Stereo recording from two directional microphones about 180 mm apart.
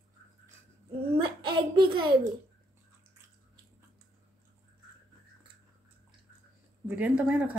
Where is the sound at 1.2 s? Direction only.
25° right (ahead or behind).